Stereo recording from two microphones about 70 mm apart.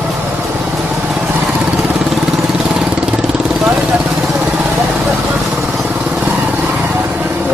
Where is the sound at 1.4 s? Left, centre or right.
Centre.